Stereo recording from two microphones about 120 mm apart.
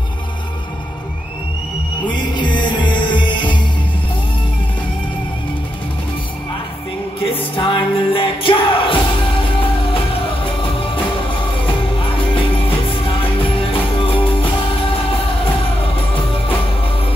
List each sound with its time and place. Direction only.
2.0 s music: 40° left (ahead or behind)
7.2 s music: 50° left (ahead or behind)
10.4 s music: 50° left (ahead or behind)